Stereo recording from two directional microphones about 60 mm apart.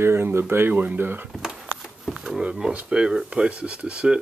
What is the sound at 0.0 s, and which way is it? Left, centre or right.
Speech, right.